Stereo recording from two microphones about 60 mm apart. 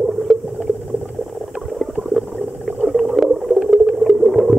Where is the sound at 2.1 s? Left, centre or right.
Centre.